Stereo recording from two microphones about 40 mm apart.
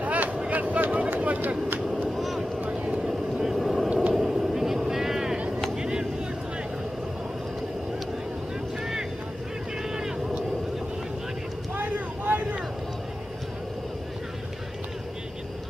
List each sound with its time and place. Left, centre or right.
0.0 s a sound: right
2.1 s vehicle: centre
2.9 s vehicle: centre
11.7 s vehicle: right